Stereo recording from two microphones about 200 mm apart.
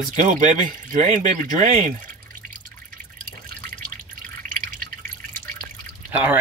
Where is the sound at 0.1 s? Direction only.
40° right (ahead or behind).